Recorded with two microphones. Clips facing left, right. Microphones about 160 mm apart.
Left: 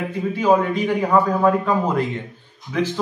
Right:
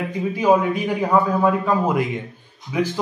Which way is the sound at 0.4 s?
10° right (ahead or behind).